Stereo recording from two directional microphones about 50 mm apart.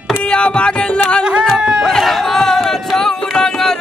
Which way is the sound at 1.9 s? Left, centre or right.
Centre.